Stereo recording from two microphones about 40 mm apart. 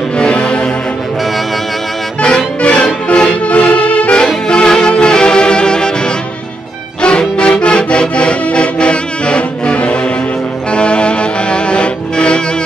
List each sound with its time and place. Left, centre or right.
0.2 s music: left
2.6 s music: left
3.4 s accordion: left
4.5 s music: centre
7.0 s accordion: left
10.7 s music: left